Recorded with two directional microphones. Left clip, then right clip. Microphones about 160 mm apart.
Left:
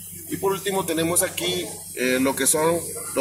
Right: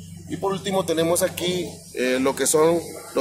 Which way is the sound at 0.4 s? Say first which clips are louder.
Even; 45° right (ahead or behind).